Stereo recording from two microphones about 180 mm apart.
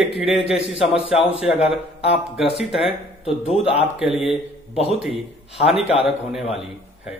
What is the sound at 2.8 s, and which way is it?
A man's voice, 30° left (ahead or behind).